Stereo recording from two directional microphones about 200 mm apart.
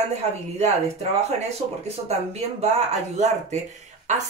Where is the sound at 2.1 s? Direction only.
30° right (ahead or behind).